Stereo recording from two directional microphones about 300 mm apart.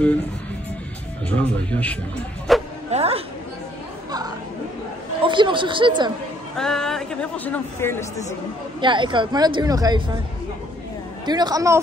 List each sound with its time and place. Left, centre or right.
1.3 s speech: centre
2.5 s bow-wow: centre
2.9 s a woman's voice: centre
5.2 s speech: centre
6.5 s speech: centre
8.8 s speech: centre
11.2 s speech: centre